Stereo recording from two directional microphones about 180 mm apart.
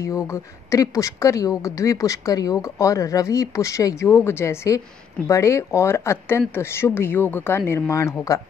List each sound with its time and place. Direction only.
0.0 s speech: 15° left (ahead or behind)